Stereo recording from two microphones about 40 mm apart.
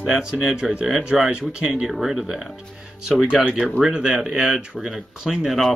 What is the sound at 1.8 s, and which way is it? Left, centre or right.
Speech, centre.